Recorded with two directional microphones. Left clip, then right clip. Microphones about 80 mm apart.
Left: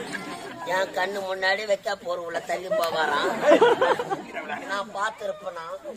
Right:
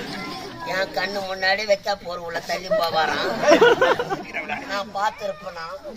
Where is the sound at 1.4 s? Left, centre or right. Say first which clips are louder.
Right 4 dB; centre.